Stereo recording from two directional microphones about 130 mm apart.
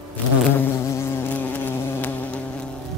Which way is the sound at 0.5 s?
15° left (ahead or behind).